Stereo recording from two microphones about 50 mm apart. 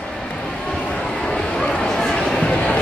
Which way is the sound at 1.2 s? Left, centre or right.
Centre.